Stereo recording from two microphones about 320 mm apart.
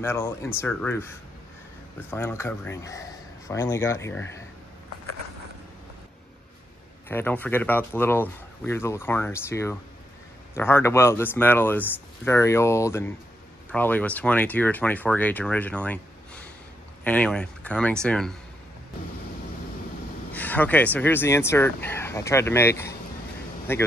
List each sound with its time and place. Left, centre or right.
0.0 s speech: centre
7.1 s speech: centre
20.3 s speech: centre